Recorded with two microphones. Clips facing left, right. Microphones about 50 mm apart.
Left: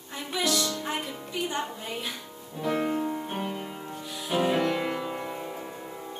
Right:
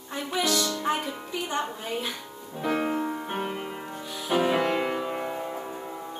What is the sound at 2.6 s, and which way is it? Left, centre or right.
Music, right.